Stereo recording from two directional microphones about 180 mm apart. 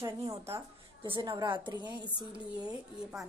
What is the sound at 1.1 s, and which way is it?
Speech, 25° right (ahead or behind).